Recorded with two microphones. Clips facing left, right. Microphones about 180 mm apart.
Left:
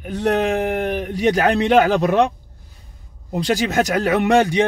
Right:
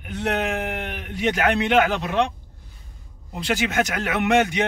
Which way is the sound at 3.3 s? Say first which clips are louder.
Left 4 dB; 40° left (ahead or behind).